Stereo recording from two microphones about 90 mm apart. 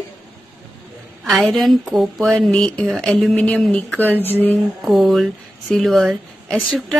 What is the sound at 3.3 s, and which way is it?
A woman's voice, 15° left (ahead or behind).